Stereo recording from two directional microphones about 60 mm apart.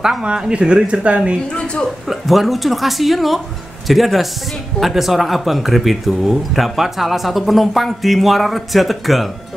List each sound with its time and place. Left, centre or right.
0.2 s speech: centre
1.5 s a woman's voice: centre
2.0 s speech: centre